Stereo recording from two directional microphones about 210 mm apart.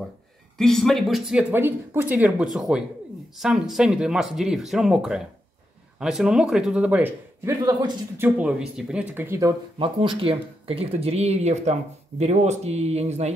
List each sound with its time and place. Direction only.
0.6 s a man's voice: centre (ahead or behind); by 13.3 s 30° right (ahead or behind)